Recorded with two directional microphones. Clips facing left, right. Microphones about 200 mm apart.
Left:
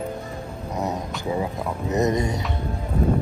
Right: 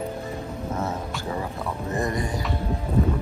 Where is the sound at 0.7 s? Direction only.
15° left (ahead or behind).